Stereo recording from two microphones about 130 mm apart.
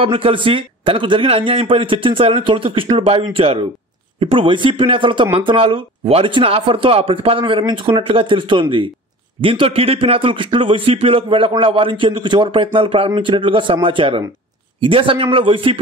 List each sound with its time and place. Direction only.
0.0 s a man's voice: 45° right (ahead or behind)